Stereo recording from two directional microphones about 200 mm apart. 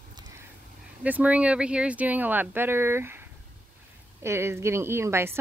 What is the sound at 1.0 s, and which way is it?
Speech, 5° right (ahead or behind).